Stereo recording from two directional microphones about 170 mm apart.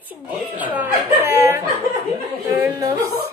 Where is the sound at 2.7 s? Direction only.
20° right (ahead or behind).